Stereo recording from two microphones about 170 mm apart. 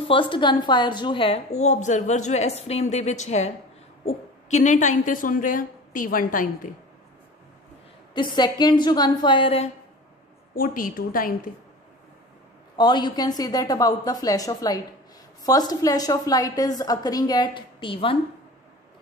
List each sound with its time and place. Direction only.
0.1 s a woman's voice: 30° left (ahead or behind); by 6.7 s 50° left (ahead or behind)
8.1 s a woman's voice: 25° left (ahead or behind)
10.5 s a woman's voice: 55° left (ahead or behind)
12.7 s a woman's voice: 25° left (ahead or behind)